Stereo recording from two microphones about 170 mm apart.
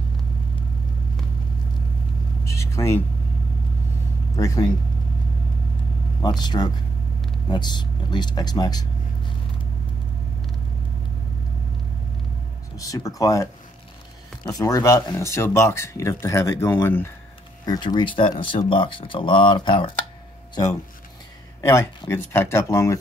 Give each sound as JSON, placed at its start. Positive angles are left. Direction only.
{"t": 2.4, "sound": "vehicle", "side_deg": 15}
{"t": 4.4, "sound": "speech", "side_deg": 20}
{"t": 6.2, "sound": "speech", "side_deg": 25}
{"t": 12.7, "sound": "speech", "side_deg": 20}
{"t": 17.6, "sound": "speech", "side_deg": 25}
{"t": 21.5, "sound": "speech", "side_deg": 15}